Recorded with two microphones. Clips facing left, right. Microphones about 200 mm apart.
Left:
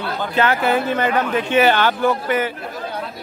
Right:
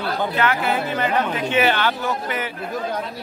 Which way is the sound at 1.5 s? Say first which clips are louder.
Left 4 dB; 45° left (ahead or behind).